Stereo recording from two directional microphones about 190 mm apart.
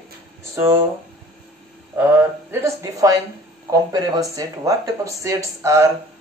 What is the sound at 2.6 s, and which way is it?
Speech, 15° right (ahead or behind).